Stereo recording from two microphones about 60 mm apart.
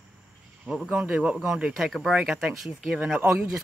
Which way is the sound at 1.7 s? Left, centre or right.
Centre.